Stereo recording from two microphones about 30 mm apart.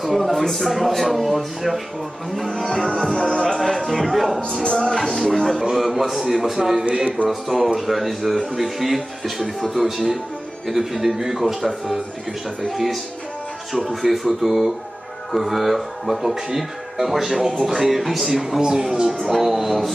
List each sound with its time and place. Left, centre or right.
0.0 s speech: centre
2.6 s music: centre
3.8 s speech: centre
4.6 s music: left
4.9 s music: centre
5.2 s speech: centre
5.6 s a man's voice: centre
11.1 s a man's voice: centre
12.7 s a man's voice: centre
18.6 s speech: right
19.3 s a man's voice: centre